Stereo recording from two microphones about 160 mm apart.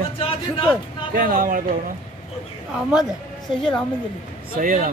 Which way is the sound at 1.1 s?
60° right (ahead or behind).